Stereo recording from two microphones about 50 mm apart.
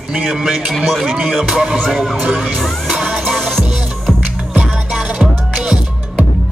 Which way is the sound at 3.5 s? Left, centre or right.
Centre.